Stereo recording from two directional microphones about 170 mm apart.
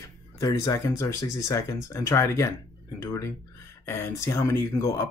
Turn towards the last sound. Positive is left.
turn(degrees=15)  # may be behind; listen again after turning